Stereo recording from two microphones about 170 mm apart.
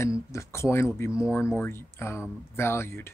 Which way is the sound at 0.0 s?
15° left (ahead or behind).